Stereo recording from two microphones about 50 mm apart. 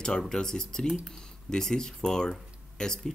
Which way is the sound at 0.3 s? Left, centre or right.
Centre.